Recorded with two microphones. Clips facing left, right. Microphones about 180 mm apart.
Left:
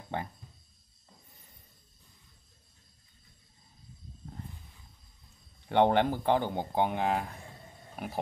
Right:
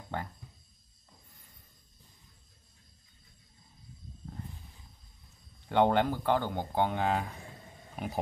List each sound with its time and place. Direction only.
5.7 s speech: 20° left (ahead or behind)